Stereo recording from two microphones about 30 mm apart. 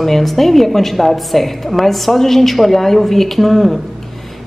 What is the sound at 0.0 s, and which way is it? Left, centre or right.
A woman's voice, centre.